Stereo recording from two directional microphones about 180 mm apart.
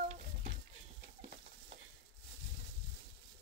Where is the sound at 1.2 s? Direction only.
35° right (ahead or behind).